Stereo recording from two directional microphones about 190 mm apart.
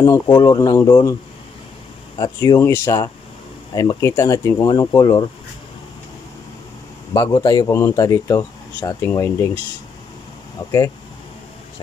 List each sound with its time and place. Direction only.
0.3 s speech: 20° left (ahead or behind)
2.1 s speech: 25° left (ahead or behind)
7.2 s speech: 20° left (ahead or behind)
10.6 s speech: 20° left (ahead or behind)